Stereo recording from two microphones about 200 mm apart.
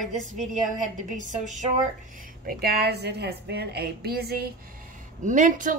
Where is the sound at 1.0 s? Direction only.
40° right (ahead or behind).